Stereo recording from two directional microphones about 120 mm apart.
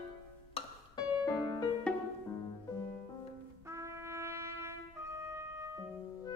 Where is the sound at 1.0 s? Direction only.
30° left (ahead or behind).